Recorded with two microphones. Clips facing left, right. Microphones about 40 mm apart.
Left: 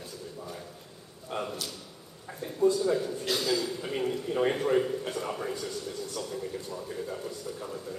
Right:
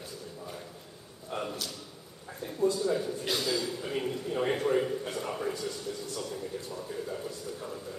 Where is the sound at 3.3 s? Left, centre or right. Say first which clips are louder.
Left 3 dB; centre.